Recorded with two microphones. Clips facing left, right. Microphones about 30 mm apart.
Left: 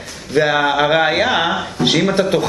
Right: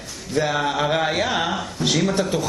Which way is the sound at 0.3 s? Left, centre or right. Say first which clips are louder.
Left 7 dB; left.